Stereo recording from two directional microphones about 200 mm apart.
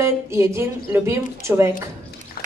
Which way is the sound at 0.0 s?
15° right (ahead or behind).